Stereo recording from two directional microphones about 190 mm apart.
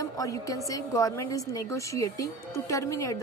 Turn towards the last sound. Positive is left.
turn(degrees=15)  # may be behind; listen again after turning